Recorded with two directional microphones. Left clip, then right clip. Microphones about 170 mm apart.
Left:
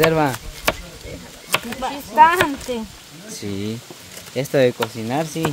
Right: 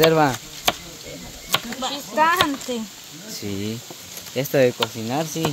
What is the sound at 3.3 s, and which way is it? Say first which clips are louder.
Speech: left 1 dB; 5° left (ahead or behind).